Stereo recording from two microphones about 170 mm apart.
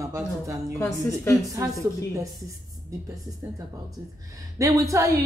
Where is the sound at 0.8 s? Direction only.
15° left (ahead or behind).